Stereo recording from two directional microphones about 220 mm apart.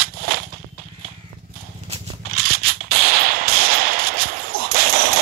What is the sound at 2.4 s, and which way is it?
Gunshot, 45° right (ahead or behind).